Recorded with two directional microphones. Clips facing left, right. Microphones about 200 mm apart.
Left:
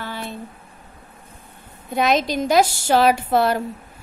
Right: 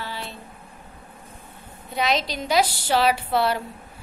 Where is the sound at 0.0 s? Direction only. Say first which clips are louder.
Left 3 dB; 50° left (ahead or behind).